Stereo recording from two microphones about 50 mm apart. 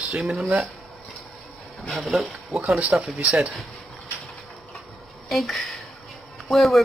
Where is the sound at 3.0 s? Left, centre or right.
Right.